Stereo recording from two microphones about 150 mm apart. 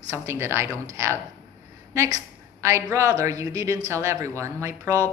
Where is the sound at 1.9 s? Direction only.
20° right (ahead or behind).